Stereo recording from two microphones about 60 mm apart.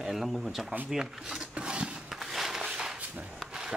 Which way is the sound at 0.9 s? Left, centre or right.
Centre.